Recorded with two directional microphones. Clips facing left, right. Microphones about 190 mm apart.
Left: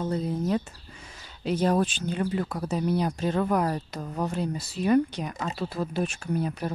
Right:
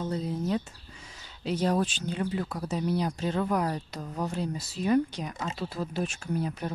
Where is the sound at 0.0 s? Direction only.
55° left (ahead or behind).